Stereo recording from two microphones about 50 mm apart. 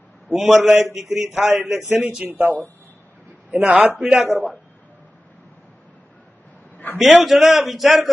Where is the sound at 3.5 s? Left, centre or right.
Right.